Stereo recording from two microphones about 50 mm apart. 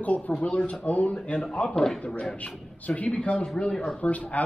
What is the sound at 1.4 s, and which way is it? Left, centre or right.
Speech, centre.